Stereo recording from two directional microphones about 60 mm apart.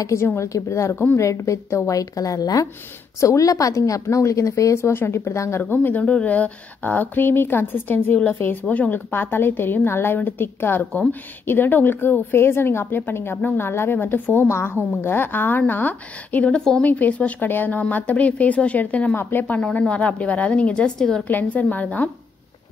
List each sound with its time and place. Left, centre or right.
0.0 s a woman's voice: left
5.6 s speech: left
8.6 s speech: left
8.9 s speech: left
10.8 s speech: left
16.8 s speech: left
21.3 s speech: left